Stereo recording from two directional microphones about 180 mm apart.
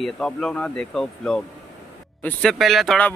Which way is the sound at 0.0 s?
5° left (ahead or behind).